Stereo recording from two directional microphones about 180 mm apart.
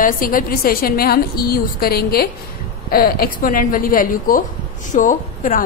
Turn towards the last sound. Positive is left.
turn(degrees=45)  # may be behind; listen again after turning